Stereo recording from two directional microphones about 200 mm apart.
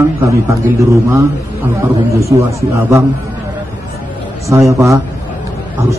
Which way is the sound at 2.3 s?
15° right (ahead or behind).